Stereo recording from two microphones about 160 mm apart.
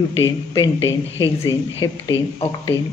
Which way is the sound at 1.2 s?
25° left (ahead or behind).